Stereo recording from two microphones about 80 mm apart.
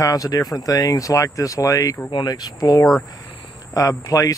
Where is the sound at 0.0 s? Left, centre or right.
Left.